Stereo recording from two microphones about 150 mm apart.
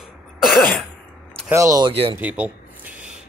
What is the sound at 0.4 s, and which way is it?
Cough, centre (ahead or behind).